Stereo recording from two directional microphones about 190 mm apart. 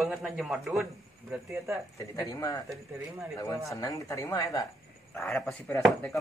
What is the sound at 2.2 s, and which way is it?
Speech, 15° left (ahead or behind).